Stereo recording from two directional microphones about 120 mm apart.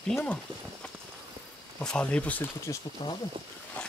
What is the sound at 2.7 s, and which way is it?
Speech, 25° left (ahead or behind).